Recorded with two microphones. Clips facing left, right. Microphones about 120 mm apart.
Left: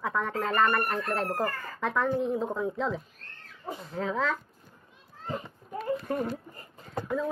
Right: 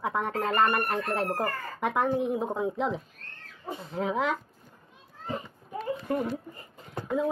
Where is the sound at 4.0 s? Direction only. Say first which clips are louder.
Right 2 dB; 15° right (ahead or behind).